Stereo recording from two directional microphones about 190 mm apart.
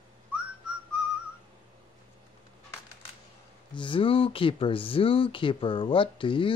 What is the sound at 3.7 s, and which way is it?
Speech, 25° left (ahead or behind).